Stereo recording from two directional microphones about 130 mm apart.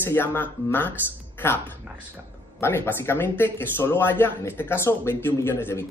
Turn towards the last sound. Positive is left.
turn(degrees=15)  # may be behind; listen again after turning